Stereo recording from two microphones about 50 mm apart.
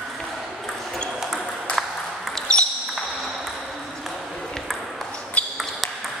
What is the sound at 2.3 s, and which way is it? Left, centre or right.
Basketball bounce, centre.